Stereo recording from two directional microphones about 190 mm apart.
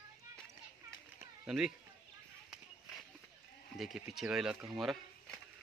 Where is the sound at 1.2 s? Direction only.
5° right (ahead or behind).